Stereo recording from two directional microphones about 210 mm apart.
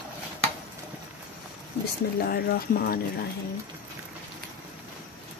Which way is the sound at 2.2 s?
45° left (ahead or behind).